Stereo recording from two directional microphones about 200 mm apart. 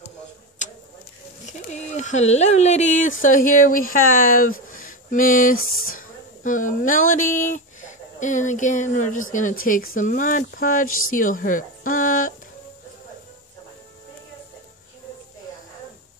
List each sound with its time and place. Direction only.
1.7 s speech: 35° left (ahead or behind)
4.6 s a sound: 40° left (ahead or behind)
5.7 s speech: 45° left (ahead or behind)